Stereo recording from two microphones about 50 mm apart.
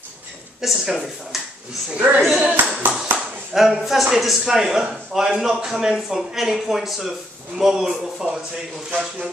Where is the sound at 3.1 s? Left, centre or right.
Right.